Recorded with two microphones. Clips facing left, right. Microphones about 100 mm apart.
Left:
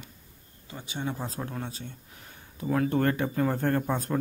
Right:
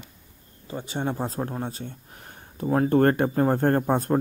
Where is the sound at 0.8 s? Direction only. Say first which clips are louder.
Right 5 dB; 50° right (ahead or behind).